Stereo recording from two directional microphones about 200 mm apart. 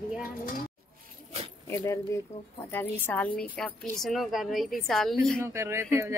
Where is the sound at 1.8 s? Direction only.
15° left (ahead or behind).